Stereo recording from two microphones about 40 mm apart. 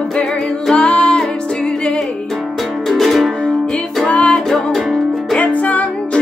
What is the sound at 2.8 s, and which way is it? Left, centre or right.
Music, centre.